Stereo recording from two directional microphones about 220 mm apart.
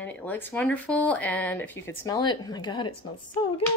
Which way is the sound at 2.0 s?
20° left (ahead or behind).